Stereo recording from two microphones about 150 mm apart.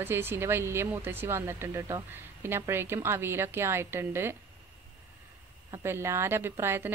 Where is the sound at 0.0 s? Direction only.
15° right (ahead or behind).